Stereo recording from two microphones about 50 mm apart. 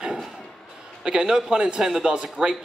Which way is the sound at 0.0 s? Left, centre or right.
Centre.